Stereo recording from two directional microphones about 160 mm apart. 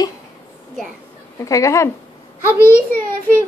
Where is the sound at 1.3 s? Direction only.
20° left (ahead or behind).